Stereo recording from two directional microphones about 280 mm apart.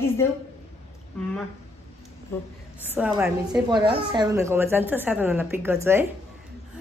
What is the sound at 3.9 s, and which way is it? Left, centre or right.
A woman's voice, centre.